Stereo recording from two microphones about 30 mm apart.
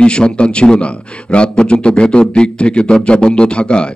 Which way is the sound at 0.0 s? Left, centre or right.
Left.